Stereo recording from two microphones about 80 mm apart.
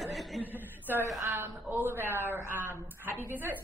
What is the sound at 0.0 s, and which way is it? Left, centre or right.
Chuckle, centre.